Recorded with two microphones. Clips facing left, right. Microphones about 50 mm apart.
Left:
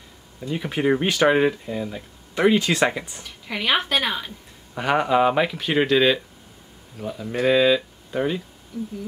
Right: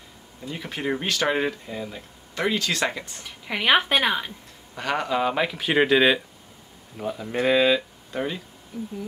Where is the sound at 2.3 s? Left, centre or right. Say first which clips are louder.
Left 6 dB; centre.